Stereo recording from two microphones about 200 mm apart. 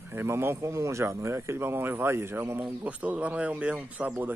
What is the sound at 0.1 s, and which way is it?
Speech, 10° right (ahead or behind).